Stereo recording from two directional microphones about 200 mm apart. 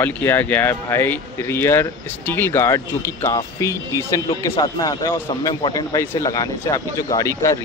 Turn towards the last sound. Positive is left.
turn(degrees=15)  # may be behind; listen again after turning